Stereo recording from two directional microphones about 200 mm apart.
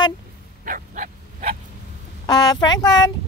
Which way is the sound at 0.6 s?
45° right (ahead or behind).